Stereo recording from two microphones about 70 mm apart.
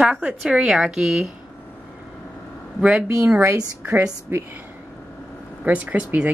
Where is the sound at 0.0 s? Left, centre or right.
Centre.